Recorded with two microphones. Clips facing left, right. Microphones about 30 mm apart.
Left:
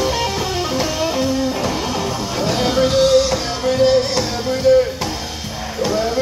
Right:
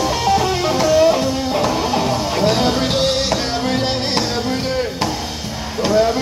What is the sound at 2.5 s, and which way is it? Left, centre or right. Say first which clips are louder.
Music: even; right.